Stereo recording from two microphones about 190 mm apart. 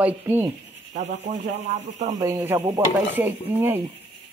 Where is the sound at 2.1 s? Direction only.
20° right (ahead or behind).